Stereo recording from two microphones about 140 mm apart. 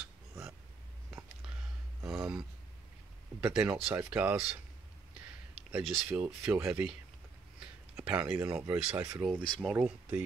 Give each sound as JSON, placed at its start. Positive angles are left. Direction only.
{"t": 2.0, "sound": "a sound", "side_deg": -5}
{"t": 3.3, "sound": "speech", "side_deg": -10}
{"t": 5.7, "sound": "speech", "side_deg": -5}
{"t": 8.0, "sound": "speech", "side_deg": -10}
{"t": 9.3, "sound": "speech", "side_deg": 5}
{"t": 9.8, "sound": "speech", "side_deg": -10}